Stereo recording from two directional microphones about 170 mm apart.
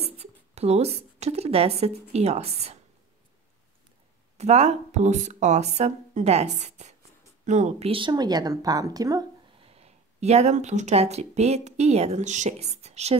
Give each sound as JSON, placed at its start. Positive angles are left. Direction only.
{"t": 0.0, "sound": "a woman's voice", "side_deg": -40}
{"t": 4.4, "sound": "speech", "side_deg": -40}
{"t": 9.7, "sound": "speech", "side_deg": -40}